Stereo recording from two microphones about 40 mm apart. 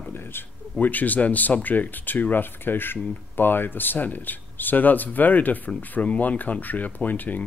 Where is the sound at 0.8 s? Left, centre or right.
Left.